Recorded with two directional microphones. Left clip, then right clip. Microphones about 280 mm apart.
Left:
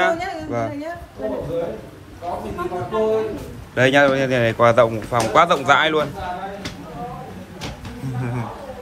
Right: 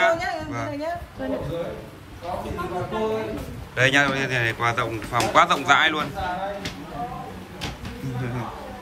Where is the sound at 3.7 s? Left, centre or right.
Centre.